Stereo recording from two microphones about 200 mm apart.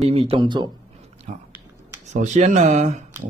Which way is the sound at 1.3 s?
35° right (ahead or behind).